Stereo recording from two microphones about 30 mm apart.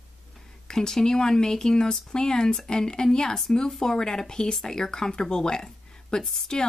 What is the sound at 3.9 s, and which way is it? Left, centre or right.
Speech, left.